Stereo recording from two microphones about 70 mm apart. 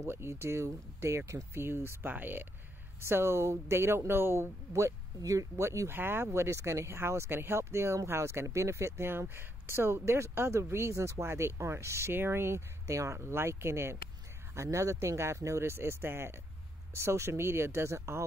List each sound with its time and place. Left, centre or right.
0.0 s speech: right